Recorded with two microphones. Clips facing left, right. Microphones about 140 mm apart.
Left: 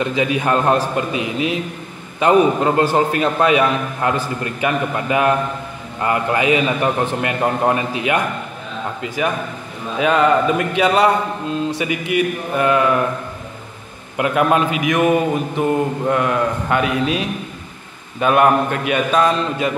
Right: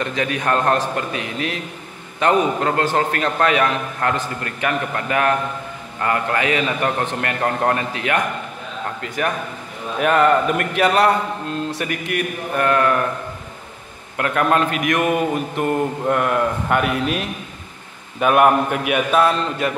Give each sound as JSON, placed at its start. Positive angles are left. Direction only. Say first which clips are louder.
{"t": 0.0, "sound": "a man's voice", "louder": "left 4 dB", "side_deg": 10}
{"t": 14.1, "sound": "a man's voice", "louder": "left 2 dB", "side_deg": 15}